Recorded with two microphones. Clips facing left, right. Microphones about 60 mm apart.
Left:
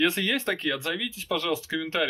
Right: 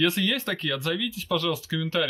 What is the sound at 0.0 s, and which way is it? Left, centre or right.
Speech, left.